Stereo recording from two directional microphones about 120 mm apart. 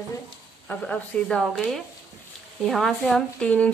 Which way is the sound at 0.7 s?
10° left (ahead or behind).